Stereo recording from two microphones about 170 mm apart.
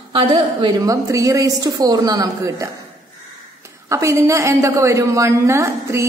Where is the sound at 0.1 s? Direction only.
30° right (ahead or behind).